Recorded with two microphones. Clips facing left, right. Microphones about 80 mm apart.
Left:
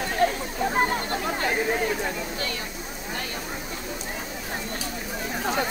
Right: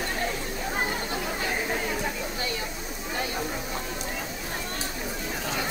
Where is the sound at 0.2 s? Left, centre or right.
Left.